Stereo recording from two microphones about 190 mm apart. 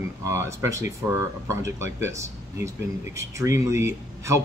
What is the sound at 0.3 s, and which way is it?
Speech, 15° right (ahead or behind).